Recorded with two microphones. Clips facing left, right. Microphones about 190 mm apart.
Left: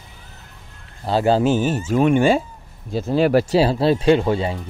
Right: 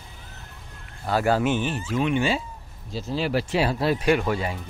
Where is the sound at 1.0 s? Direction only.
25° left (ahead or behind); by 3.4 s 55° left (ahead or behind).